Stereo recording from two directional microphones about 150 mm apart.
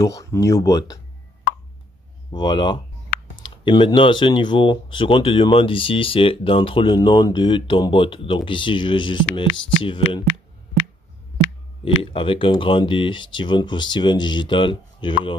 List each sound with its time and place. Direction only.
0.0 s speech: 20° left (ahead or behind)
2.3 s speech: 30° left (ahead or behind)
11.8 s speech: 35° left (ahead or behind)